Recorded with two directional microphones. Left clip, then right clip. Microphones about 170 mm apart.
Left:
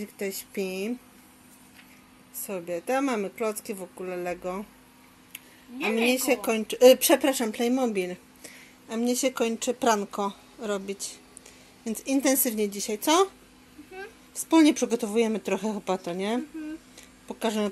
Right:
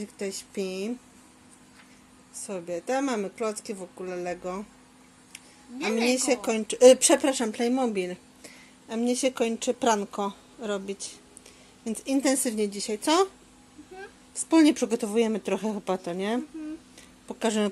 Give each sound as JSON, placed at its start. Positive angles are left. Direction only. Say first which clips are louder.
{"t": 0.0, "sound": "a woman's voice", "louder": "left 1 dB", "side_deg": 5}
{"t": 2.4, "sound": "a woman's voice", "louder": "left 1 dB", "side_deg": 5}
{"t": 5.9, "sound": "a woman's voice", "louder": "even", "side_deg": 0}